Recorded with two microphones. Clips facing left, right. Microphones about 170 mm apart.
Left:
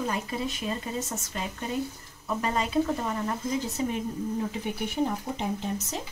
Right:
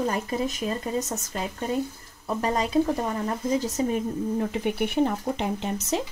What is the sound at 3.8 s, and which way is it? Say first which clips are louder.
Speech: right 3 dB; 40° right (ahead or behind).